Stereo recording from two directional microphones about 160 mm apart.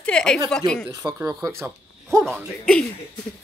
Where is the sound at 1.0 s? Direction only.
25° right (ahead or behind).